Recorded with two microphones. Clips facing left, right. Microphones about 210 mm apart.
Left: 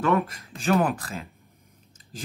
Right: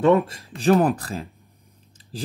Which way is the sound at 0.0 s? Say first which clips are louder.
Right 6 dB; 30° right (ahead or behind).